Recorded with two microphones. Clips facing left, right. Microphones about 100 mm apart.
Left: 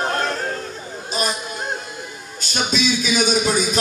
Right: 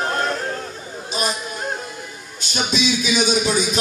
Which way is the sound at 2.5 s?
45° left (ahead or behind).